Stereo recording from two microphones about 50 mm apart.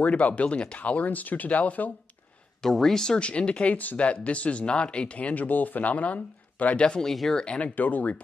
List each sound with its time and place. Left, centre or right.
0.0 s speech: left
2.6 s speech: centre; by 6.8 s left
6.8 s speech: centre
7.1 s speech: centre
7.4 s speech: left
7.7 s speech: left